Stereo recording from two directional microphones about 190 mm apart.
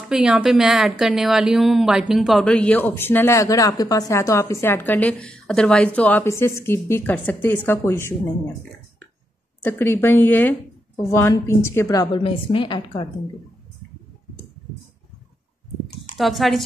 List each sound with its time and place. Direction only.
0.1 s a woman's voice: 5° right (ahead or behind); by 8.1 s 15° left (ahead or behind)
9.7 s a woman's voice: 10° left (ahead or behind)
16.2 s speech: centre (ahead or behind)